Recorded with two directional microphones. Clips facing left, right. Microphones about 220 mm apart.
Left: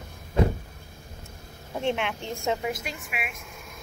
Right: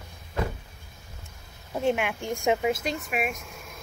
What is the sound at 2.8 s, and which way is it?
Speech, 40° right (ahead or behind).